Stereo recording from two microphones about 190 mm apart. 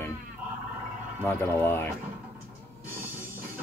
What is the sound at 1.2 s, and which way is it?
Speech, 10° left (ahead or behind).